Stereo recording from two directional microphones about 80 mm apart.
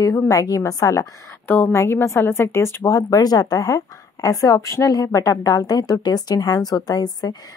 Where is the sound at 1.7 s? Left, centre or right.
Left.